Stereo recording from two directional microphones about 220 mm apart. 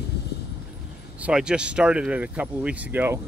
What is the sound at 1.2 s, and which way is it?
Speech, 5° right (ahead or behind).